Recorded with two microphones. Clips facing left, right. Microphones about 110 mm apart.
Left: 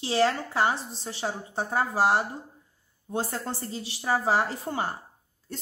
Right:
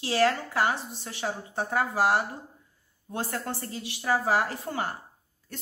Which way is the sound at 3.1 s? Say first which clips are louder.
Left 2 dB; 30° left (ahead or behind).